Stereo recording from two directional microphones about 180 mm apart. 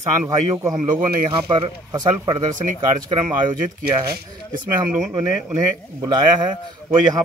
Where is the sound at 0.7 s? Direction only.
45° right (ahead or behind).